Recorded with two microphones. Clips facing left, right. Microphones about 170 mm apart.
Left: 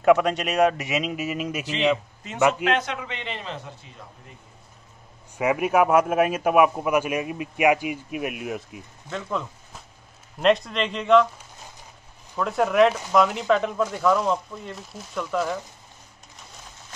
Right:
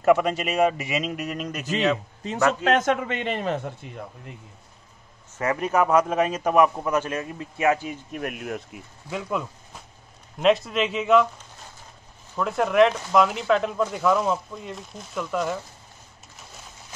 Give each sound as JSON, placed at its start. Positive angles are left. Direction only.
{"t": 0.0, "sound": "speech", "side_deg": 0}
{"t": 2.6, "sound": "a man's voice", "side_deg": -45}
{"t": 5.4, "sound": "a man's voice", "side_deg": 10}
{"t": 12.4, "sound": "speech", "side_deg": 0}